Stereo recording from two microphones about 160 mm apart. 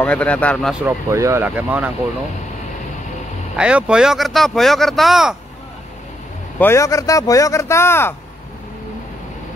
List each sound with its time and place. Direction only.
0.0 s speech: 10° left (ahead or behind)
0.8 s speech: 15° right (ahead or behind)
3.5 s speech: 5° right (ahead or behind)
6.6 s speech: 20° left (ahead or behind)